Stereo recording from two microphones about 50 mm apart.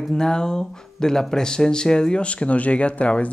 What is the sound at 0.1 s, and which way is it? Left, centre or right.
Speech, centre.